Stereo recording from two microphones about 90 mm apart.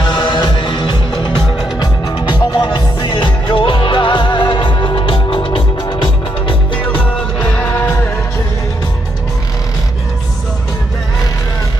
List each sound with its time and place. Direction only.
0.0 s music: 55° left (ahead or behind)
6.8 s music: 20° left (ahead or behind)
7.2 s music: 10° left (ahead or behind)